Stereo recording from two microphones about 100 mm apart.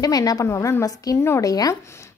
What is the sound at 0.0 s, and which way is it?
A woman's voice, 40° left (ahead or behind).